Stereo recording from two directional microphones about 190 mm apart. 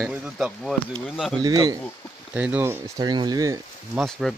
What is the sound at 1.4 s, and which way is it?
Speech, 20° right (ahead or behind).